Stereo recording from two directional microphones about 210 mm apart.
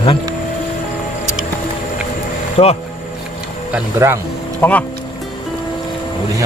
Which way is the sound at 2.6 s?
30° left (ahead or behind).